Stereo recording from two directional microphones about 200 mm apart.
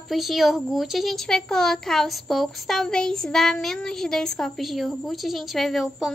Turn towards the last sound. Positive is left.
turn(degrees=0)  # may be behind; listen again after turning